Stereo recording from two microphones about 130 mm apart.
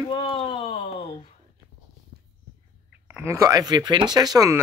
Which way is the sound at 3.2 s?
20° right (ahead or behind).